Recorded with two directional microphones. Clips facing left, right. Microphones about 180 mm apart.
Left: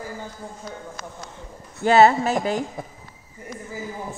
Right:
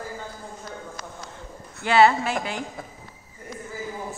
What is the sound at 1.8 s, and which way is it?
Speech, 45° left (ahead or behind).